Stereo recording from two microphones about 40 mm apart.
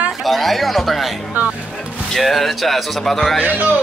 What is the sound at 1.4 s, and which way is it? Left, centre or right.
Speech, right.